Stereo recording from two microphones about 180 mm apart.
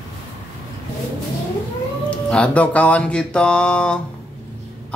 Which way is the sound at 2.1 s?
5° left (ahead or behind).